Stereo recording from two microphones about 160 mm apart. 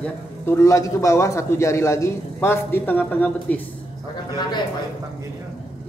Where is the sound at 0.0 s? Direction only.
15° left (ahead or behind).